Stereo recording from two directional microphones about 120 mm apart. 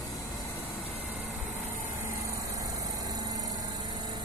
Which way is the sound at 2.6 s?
35° right (ahead or behind).